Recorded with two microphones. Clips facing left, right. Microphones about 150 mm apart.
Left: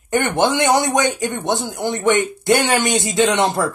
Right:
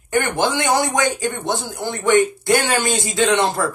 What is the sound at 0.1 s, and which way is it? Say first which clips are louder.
Speech: left 2 dB; 20° left (ahead or behind).